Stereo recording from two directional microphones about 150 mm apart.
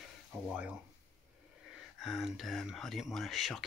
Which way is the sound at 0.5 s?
5° right (ahead or behind).